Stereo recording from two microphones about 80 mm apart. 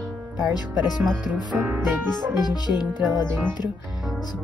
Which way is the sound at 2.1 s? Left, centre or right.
Left.